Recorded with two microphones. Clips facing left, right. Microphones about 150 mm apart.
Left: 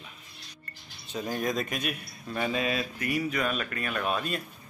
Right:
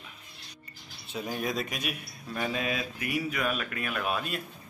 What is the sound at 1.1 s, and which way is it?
A man's voice, 5° right (ahead or behind).